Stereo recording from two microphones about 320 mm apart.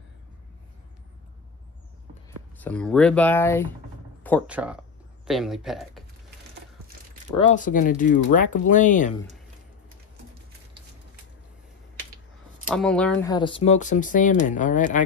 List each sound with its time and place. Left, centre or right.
2.5 s speech: centre
7.3 s speech: left
12.7 s speech: centre; by 15.0 s left